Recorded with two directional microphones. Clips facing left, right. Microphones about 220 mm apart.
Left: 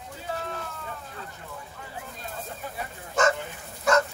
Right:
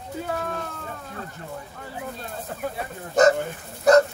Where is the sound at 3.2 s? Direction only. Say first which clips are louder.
Right 7 dB; 40° right (ahead or behind).